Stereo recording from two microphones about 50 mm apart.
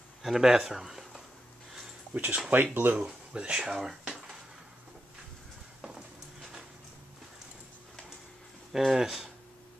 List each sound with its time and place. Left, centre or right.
0.2 s speech: centre
2.1 s speech: right
3.3 s speech: centre
3.7 s a sound: centre
8.7 s speech: centre